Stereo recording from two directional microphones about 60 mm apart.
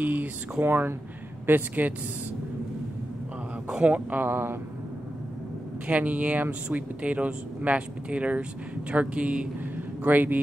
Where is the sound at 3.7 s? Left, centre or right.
Centre; by 4.6 s right.